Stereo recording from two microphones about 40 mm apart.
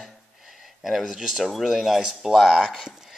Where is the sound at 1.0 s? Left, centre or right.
Centre.